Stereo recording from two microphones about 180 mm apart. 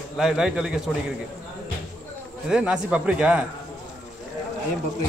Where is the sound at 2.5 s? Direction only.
5° right (ahead or behind).